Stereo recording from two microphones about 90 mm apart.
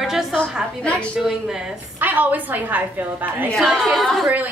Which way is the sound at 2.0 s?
20° right (ahead or behind).